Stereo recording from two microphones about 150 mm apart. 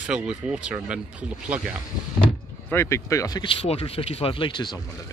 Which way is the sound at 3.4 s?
40° left (ahead or behind).